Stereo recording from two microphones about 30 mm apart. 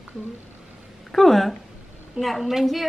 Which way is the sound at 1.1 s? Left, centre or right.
Centre.